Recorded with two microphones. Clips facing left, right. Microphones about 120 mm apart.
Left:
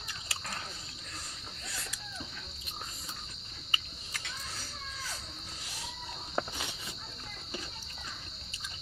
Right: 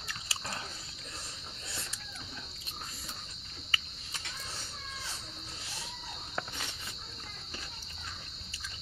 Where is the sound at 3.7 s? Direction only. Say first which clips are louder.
Even; 20° left (ahead or behind).